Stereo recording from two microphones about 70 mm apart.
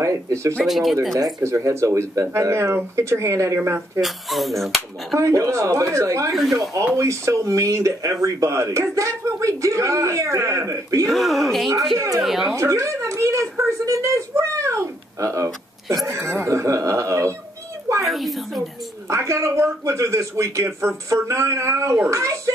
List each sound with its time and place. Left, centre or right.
0.0 s speech: right
0.7 s speech: centre
1.4 s speech: right
4.0 s speech: centre
5.2 s speech: right
6.3 s speech: centre
7.0 s speech: right
11.1 s speech: centre
12.5 s a sound: right
16.1 s speech: right
18.0 s speech: centre
19.0 s speech: right